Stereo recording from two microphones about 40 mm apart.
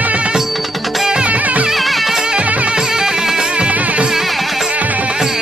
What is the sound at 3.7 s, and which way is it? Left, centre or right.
Music, right.